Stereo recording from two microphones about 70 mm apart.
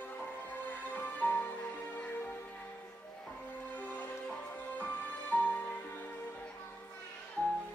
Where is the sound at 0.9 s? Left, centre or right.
Left.